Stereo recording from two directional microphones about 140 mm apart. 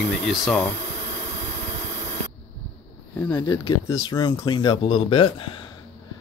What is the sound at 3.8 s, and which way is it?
A man's voice, 25° left (ahead or behind).